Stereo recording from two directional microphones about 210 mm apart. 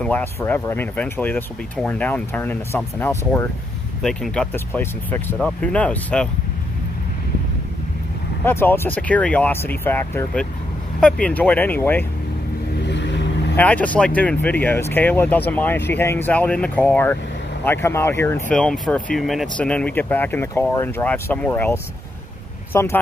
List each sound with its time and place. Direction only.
0.0 s speech: 10° left (ahead or behind)
8.5 s speech: 10° left (ahead or behind)
12.8 s vehicle: 55° left (ahead or behind)
13.6 s speech: 5° left (ahead or behind)